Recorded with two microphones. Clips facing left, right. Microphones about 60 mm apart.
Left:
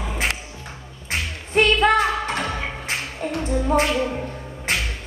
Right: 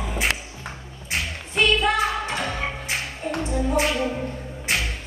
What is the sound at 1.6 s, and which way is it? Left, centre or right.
Music, left.